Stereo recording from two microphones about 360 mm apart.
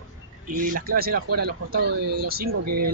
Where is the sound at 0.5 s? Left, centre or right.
Right.